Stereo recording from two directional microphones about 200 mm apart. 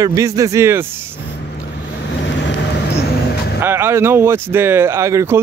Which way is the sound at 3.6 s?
10° right (ahead or behind).